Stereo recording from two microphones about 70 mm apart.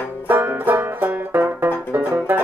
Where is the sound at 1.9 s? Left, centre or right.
Right.